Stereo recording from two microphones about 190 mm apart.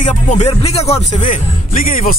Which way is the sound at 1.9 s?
45° left (ahead or behind).